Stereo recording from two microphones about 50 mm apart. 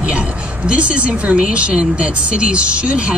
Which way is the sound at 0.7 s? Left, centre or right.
Right.